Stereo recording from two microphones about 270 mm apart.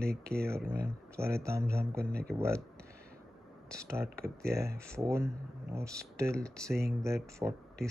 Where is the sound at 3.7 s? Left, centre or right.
Centre.